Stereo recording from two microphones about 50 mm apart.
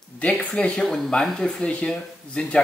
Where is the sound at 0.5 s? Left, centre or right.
Centre.